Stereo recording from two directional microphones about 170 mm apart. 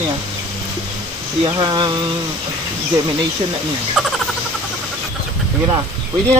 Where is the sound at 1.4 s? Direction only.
25° right (ahead or behind).